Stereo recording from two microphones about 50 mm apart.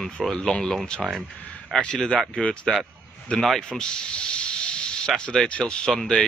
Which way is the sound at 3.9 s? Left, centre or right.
Centre.